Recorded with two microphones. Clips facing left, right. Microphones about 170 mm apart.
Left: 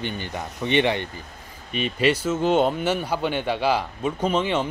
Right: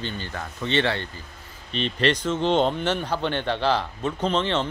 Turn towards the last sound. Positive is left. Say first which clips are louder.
# left 1 dB
turn(degrees=10)  # may be behind; listen again after turning